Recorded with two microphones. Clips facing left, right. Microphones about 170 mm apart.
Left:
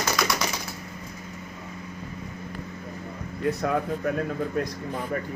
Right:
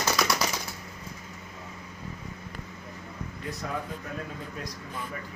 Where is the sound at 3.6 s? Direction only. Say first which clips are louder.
Left 9 dB; 60° left (ahead or behind).